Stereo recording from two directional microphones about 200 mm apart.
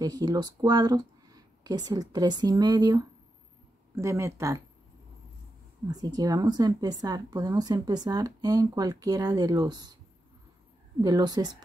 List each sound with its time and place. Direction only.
0.0 s speech: 20° right (ahead or behind)
5.9 s speech: 20° right (ahead or behind)
11.0 s speech: 20° right (ahead or behind)